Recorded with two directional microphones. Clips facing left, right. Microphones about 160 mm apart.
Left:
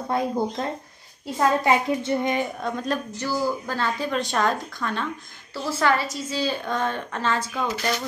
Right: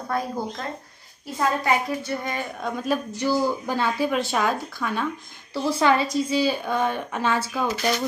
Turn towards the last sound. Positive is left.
turn(degrees=-10)  # may be behind; listen again after turning